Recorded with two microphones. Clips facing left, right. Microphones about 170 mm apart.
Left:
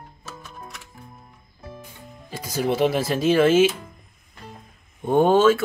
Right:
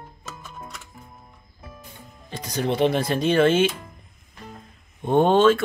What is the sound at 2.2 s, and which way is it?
Speech, 5° left (ahead or behind).